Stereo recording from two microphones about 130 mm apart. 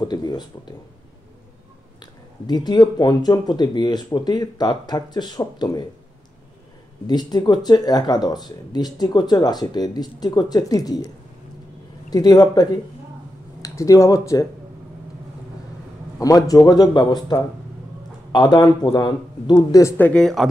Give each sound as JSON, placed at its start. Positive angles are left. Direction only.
{"t": 0.0, "sound": "speech", "side_deg": 35}
{"t": 2.0, "sound": "speech", "side_deg": 35}
{"t": 7.1, "sound": "speech", "side_deg": 35}
{"t": 12.1, "sound": "a man's voice", "side_deg": 30}
{"t": 16.2, "sound": "a man's voice", "side_deg": 30}
{"t": 20.0, "sound": "speech", "side_deg": 10}